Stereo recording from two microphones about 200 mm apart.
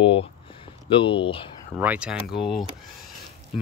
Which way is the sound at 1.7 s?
5° right (ahead or behind).